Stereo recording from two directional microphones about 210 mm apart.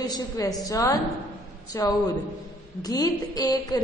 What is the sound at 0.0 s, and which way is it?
A woman's voice, 20° left (ahead or behind).